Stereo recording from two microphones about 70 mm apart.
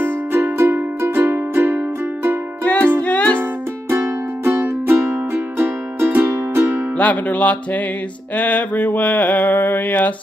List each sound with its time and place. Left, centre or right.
0.0 s music: right
2.6 s music: centre
4.6 s music: right
7.0 s mantra: left